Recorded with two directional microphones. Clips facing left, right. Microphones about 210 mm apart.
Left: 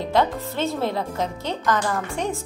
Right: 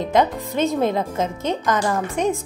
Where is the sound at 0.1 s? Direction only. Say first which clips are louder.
Right 2 dB; 15° right (ahead or behind).